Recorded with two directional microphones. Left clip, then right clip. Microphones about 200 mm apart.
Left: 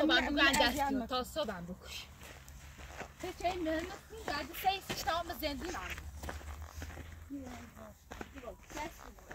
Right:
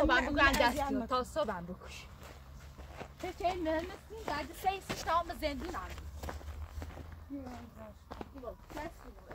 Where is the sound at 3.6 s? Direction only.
5° left (ahead or behind).